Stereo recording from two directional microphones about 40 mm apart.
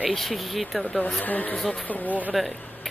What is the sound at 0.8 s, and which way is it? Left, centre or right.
Speech, left.